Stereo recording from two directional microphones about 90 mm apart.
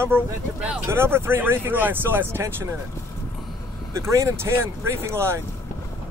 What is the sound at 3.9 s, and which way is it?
Speech, 35° right (ahead or behind).